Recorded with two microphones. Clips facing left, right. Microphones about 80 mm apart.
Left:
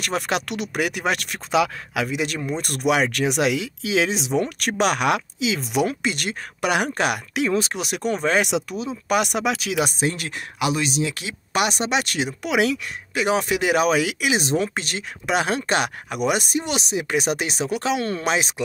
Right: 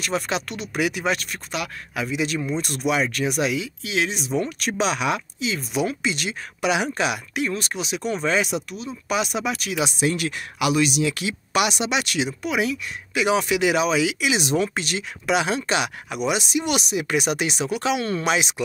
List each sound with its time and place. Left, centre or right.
0.0 s speech: left
2.0 s speech: left
7.3 s speech: left
9.8 s speech: left
10.0 s speech: left
12.4 s speech: left
13.1 s speech: left
16.6 s speech: left